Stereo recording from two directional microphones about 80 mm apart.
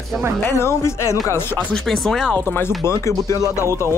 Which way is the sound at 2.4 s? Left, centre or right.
Left.